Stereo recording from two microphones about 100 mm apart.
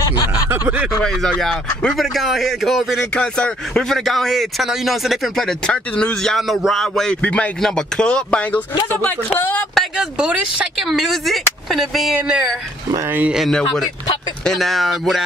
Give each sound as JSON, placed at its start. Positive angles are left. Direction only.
{"t": 0.5, "sound": "speech", "side_deg": -20}
{"t": 1.0, "sound": "speech", "side_deg": 5}
{"t": 3.2, "sound": "speech", "side_deg": 10}
{"t": 9.8, "sound": "speech", "side_deg": -10}